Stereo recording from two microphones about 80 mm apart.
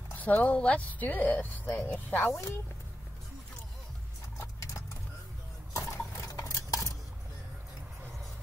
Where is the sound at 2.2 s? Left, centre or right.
Left.